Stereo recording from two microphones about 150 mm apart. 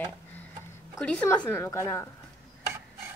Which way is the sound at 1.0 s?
5° left (ahead or behind).